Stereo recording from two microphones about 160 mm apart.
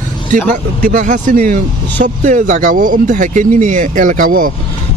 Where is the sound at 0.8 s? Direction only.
50° right (ahead or behind).